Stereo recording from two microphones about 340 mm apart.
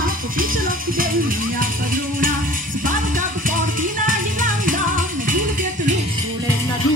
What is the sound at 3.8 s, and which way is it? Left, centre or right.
Music, right.